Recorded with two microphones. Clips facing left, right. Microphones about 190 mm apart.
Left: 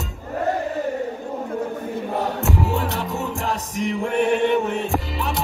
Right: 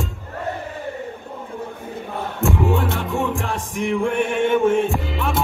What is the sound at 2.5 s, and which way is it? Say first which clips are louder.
Music: right 3 dB; 40° left (ahead or behind).